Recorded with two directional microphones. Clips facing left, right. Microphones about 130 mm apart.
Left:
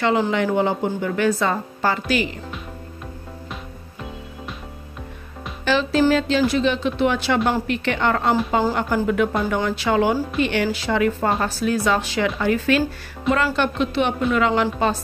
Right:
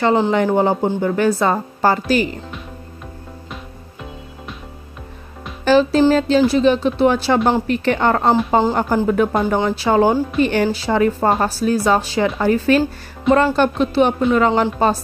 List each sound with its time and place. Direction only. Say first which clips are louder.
0.0 s a woman's voice: right 4 dB; 35° right (ahead or behind)
5.7 s a woman's voice: right 5 dB; 40° right (ahead or behind)